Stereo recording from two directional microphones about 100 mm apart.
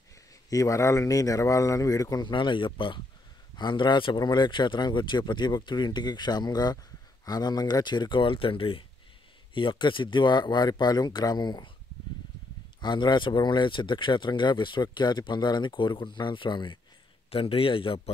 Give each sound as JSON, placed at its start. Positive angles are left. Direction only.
{"t": 0.5, "sound": "speech", "side_deg": 35}
{"t": 2.2, "sound": "speech", "side_deg": 55}
{"t": 12.8, "sound": "speech", "side_deg": 45}
{"t": 17.3, "sound": "speech", "side_deg": 65}